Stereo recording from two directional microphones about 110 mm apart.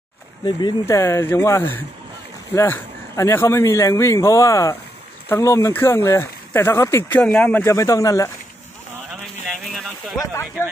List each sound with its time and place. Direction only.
0.5 s speech: 45° left (ahead or behind)
0.8 s speech: 25° left (ahead or behind)
7.2 s speech: 5° left (ahead or behind)
7.5 s speech: 25° left (ahead or behind)
9.7 s speech: centre (ahead or behind)